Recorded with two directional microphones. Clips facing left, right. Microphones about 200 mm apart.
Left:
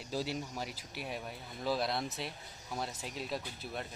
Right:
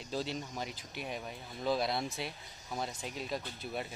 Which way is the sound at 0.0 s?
10° left (ahead or behind).